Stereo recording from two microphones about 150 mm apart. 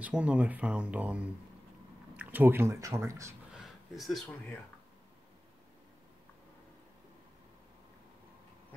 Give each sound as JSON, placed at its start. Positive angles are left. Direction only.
{"t": 0.0, "sound": "speech", "side_deg": -10}
{"t": 3.5, "sound": "speech", "side_deg": 0}